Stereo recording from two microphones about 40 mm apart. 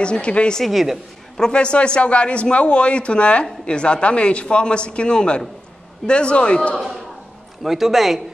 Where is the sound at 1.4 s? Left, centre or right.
Left.